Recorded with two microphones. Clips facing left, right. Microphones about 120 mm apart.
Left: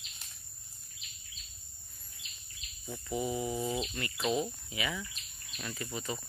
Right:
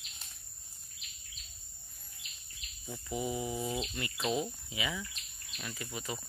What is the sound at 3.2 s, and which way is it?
Speech, 15° right (ahead or behind).